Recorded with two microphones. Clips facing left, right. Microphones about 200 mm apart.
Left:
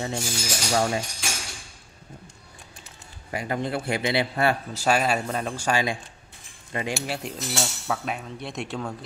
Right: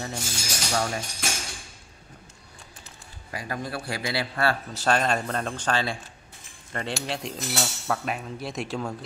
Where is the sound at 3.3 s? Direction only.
25° left (ahead or behind).